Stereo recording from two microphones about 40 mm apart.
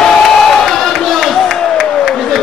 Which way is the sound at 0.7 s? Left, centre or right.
Centre.